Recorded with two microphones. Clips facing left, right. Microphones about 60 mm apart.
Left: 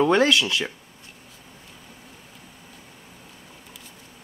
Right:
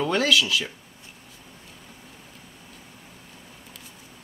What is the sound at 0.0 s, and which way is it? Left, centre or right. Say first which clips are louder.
Speech: left 4 dB; left.